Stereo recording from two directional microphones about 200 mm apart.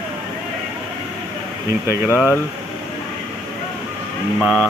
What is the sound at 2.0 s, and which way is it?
Speech, 10° left (ahead or behind).